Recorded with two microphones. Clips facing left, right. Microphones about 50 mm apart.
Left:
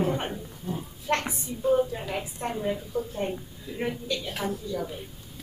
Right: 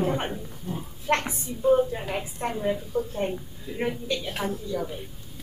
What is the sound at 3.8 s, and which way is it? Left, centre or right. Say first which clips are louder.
A woman's voice: right 2 dB; right.